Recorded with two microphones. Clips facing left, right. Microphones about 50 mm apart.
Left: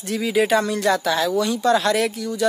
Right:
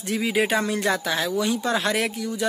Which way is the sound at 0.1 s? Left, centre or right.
Centre.